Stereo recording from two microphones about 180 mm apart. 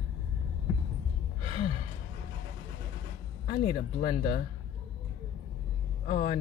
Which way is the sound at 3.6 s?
35° left (ahead or behind).